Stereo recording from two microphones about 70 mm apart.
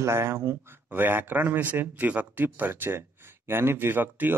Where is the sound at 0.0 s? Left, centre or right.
Right.